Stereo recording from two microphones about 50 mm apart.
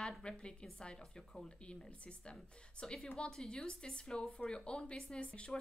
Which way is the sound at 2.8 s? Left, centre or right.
Centre.